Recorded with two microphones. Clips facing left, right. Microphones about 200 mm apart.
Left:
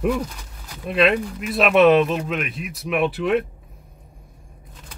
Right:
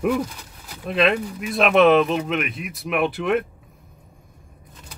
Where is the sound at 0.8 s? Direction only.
Centre (ahead or behind).